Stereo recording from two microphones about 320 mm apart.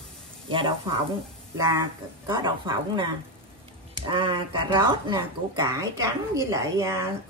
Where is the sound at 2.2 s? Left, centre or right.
Centre.